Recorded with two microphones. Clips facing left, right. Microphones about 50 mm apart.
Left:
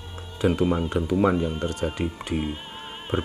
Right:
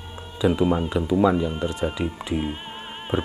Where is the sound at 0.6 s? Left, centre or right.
Centre.